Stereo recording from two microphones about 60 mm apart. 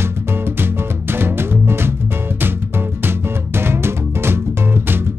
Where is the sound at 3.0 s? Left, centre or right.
Right.